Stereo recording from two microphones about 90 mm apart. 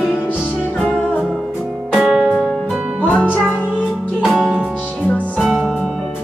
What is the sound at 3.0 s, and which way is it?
Music, 20° left (ahead or behind).